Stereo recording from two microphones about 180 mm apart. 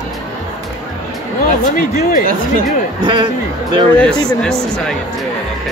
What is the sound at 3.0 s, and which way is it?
Speech, 25° right (ahead or behind).